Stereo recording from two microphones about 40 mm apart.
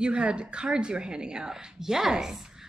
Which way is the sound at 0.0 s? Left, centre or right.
Right.